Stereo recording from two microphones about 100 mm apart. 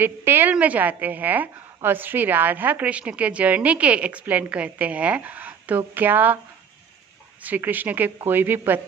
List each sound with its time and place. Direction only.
0.0 s a woman's voice: 20° right (ahead or behind)
7.4 s speech: 15° right (ahead or behind)